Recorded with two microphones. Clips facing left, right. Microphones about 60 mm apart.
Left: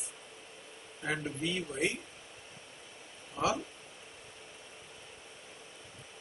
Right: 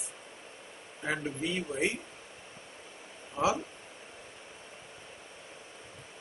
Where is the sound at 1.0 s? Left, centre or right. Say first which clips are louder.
Right 2 dB; centre.